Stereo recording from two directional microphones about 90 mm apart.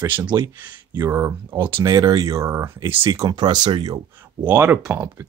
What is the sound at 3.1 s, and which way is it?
Speech, 50° right (ahead or behind).